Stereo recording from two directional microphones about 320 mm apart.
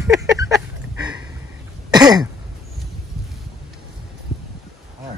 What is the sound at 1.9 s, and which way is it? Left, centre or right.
Throat clearing, centre.